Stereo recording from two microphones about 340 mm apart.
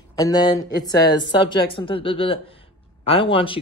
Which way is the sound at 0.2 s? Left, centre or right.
Centre.